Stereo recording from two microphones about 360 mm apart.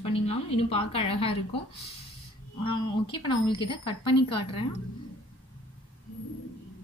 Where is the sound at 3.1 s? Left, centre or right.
Centre.